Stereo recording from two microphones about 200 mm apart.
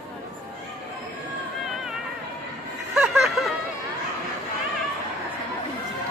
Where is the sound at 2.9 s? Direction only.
Centre (ahead or behind).